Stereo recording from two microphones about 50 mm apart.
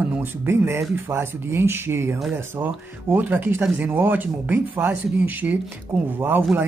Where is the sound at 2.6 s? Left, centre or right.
Right.